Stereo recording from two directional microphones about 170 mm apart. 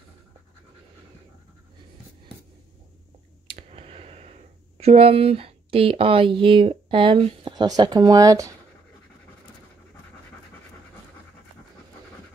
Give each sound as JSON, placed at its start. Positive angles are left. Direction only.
{"t": 3.4, "sound": "speech", "side_deg": -35}